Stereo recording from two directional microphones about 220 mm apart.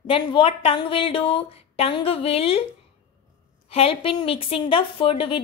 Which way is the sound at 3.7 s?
25° left (ahead or behind).